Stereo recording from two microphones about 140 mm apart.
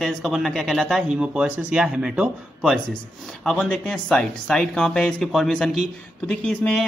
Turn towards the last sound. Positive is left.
turn(degrees=10)  # may be behind; listen again after turning